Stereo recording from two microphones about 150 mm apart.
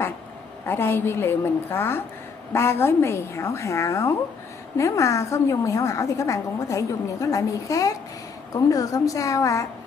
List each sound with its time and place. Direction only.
0.7 s a woman's voice: 15° left (ahead or behind)